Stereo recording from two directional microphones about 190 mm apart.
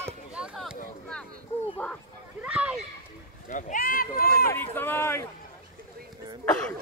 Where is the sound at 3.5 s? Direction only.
45° left (ahead or behind).